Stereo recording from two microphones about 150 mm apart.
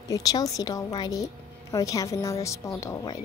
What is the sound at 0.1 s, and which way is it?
Speech, 25° left (ahead or behind).